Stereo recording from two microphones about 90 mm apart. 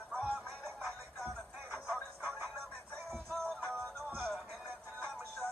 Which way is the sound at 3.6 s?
20° right (ahead or behind).